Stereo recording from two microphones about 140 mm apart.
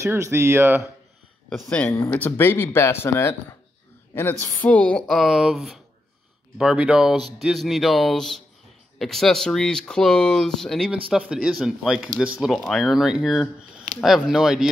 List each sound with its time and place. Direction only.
0.0 s speech: 20° right (ahead or behind)
2.0 s speech: 10° left (ahead or behind)
10.9 s speech: 5° right (ahead or behind)